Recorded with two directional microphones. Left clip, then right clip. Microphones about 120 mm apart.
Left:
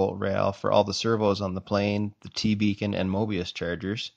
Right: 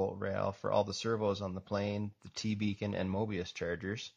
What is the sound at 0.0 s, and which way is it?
Speech, 25° left (ahead or behind).